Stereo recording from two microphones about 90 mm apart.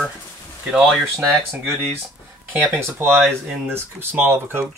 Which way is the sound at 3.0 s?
25° right (ahead or behind).